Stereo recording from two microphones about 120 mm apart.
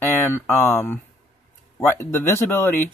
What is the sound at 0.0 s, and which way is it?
Speech, 20° left (ahead or behind).